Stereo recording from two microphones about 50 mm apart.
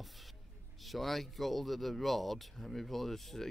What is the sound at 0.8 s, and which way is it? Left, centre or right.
Speech, centre.